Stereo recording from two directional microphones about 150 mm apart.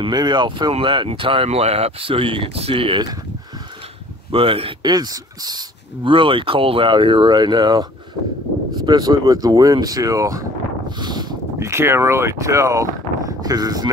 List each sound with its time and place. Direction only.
0.0 s speech: 30° right (ahead or behind)
4.3 s speech: 40° right (ahead or behind)